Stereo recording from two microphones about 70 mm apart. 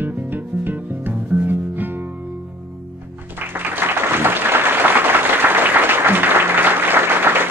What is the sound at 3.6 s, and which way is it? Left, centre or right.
Applause, right.